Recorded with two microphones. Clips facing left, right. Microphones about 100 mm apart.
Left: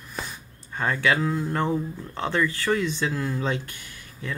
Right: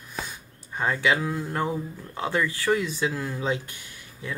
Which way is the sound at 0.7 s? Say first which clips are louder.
Even; 15° right (ahead or behind).